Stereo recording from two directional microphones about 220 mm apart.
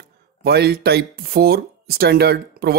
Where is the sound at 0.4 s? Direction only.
45° right (ahead or behind).